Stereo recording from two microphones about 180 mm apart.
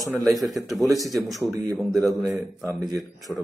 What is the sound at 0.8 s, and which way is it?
A man's voice, 20° right (ahead or behind).